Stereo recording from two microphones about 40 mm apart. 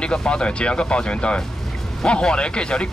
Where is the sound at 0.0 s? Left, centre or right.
Left.